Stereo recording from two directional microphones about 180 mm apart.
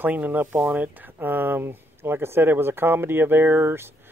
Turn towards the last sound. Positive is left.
turn(degrees=-15)  # may be behind; listen again after turning